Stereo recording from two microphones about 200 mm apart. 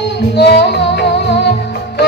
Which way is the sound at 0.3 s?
55° left (ahead or behind).